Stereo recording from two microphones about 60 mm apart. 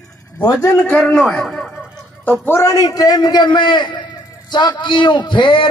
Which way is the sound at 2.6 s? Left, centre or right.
Left.